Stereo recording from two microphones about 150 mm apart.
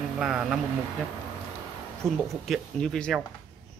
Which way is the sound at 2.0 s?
5° left (ahead or behind).